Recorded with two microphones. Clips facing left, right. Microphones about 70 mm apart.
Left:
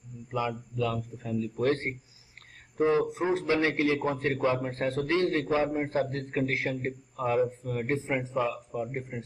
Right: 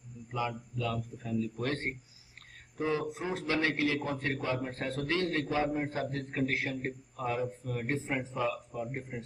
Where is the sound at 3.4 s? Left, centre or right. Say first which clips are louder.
Left 2 dB; centre.